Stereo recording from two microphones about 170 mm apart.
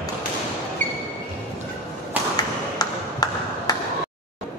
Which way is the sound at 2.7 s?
20° left (ahead or behind).